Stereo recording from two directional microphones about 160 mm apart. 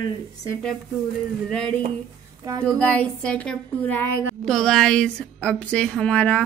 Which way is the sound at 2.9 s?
5° left (ahead or behind).